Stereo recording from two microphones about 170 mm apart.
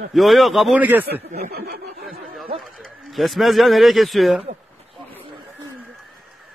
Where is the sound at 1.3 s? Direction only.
60° right (ahead or behind).